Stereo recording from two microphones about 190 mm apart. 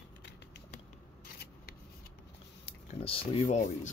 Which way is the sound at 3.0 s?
30° left (ahead or behind).